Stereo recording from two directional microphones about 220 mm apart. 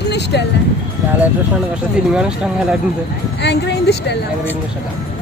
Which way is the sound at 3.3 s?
50° left (ahead or behind).